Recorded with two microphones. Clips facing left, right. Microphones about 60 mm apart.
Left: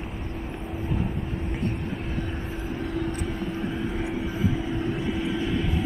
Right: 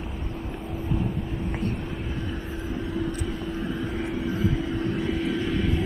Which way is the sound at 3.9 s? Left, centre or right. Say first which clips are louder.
Right 1 dB; centre.